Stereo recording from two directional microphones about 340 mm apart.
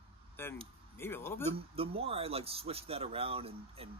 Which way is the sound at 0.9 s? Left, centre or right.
Centre.